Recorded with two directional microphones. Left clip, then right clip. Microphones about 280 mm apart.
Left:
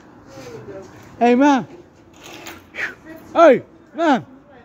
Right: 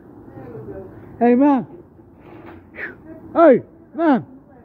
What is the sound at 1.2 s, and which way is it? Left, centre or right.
Speech, centre.